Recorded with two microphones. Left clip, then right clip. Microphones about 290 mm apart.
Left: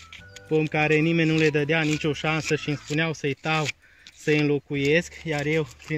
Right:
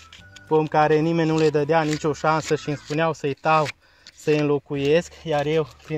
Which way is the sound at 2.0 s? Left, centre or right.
Centre.